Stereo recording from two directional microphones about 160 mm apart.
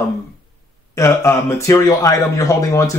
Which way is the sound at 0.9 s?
20° left (ahead or behind).